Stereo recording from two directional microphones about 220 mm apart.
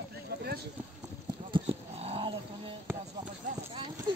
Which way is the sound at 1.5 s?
25° right (ahead or behind).